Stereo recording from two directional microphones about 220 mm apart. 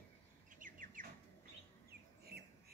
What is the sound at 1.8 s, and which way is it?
Chicken, 45° right (ahead or behind).